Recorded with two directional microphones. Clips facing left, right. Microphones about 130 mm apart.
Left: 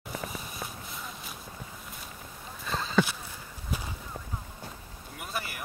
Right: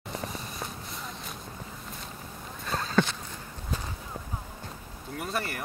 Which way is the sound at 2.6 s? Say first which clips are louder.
Right 1 dB; 5° left (ahead or behind).